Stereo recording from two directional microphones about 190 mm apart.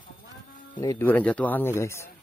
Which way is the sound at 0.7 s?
20° left (ahead or behind).